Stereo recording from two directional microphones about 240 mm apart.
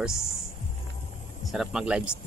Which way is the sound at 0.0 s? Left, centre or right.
Centre.